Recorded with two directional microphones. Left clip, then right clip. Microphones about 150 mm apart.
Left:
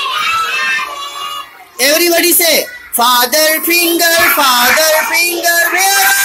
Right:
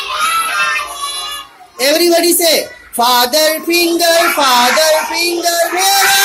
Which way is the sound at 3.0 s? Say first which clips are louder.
Left 1 dB; 10° right (ahead or behind).